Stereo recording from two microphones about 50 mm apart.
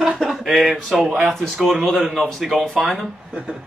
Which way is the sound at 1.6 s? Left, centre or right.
Centre.